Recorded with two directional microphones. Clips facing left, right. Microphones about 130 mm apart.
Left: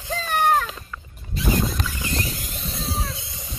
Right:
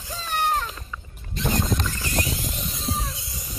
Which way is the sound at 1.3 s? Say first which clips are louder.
Left 1 dB; 5° left (ahead or behind).